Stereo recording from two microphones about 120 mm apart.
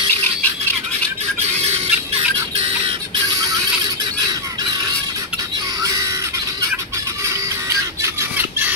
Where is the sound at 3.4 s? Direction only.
30° right (ahead or behind).